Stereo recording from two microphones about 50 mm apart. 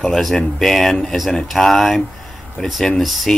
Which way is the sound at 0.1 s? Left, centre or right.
Centre.